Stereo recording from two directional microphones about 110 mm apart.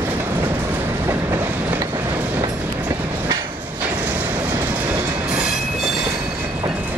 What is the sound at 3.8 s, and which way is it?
Sliding door, 15° right (ahead or behind).